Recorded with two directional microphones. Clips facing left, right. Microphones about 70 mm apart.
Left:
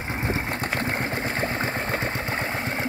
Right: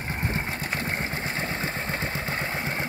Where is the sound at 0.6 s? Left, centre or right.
Left.